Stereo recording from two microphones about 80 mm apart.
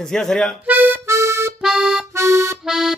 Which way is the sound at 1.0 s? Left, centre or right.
Right.